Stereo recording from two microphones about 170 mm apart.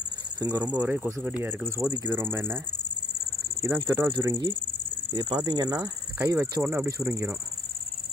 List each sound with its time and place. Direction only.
0.6 s speech: 10° right (ahead or behind)
3.6 s speech: 15° right (ahead or behind)